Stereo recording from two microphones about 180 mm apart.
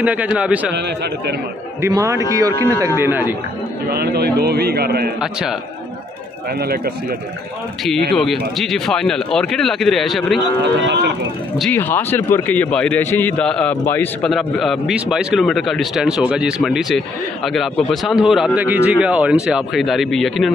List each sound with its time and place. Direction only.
0.0 s a man's voice: 10° right (ahead or behind)
0.7 s a man's voice: 70° right (ahead or behind)
1.8 s a man's voice: 20° right (ahead or behind)
3.9 s a man's voice: 60° right (ahead or behind)
8.3 s a man's voice: centre (ahead or behind)
10.6 s a man's voice: 75° right (ahead or behind)
11.7 s a man's voice: 10° left (ahead or behind)